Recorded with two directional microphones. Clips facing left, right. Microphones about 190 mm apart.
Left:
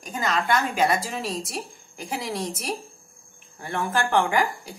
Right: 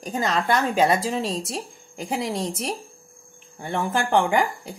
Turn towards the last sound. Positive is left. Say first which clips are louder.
# right 2 dB
turn(degrees=-25)  # may be behind; listen again after turning